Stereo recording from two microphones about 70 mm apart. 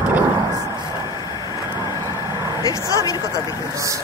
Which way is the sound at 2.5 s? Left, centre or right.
Left.